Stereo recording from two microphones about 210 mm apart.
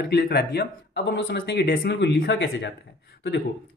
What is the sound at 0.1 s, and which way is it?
Speech, 50° left (ahead or behind).